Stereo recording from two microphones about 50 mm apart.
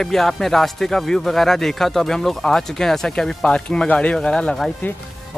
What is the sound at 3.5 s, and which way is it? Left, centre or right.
Speech, left.